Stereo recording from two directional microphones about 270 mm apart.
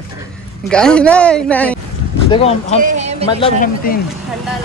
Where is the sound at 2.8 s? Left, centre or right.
Right.